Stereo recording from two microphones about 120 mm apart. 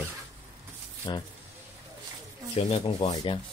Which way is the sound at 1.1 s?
35° left (ahead or behind).